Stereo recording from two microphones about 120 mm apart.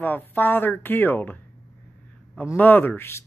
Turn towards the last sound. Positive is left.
turn(degrees=15)  # may be behind; listen again after turning